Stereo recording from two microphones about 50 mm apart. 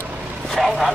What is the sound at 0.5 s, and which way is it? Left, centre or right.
Vehicle, centre.